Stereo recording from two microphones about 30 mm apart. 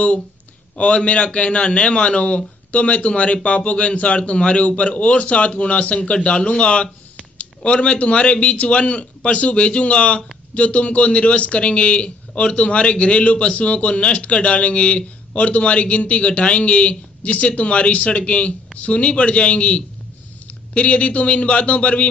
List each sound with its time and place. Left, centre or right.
0.7 s a man's voice: left
6.3 s a man's voice: left